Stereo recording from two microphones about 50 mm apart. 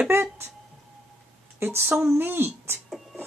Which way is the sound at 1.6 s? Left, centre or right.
Right.